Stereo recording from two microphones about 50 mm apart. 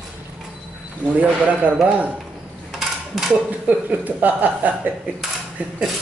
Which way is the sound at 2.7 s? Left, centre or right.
Centre.